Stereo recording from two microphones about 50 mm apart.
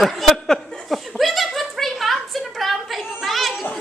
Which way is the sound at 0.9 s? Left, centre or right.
Centre.